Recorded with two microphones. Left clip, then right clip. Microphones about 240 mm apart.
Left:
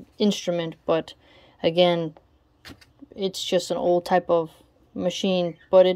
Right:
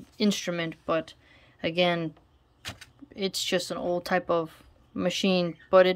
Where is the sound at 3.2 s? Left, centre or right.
Centre.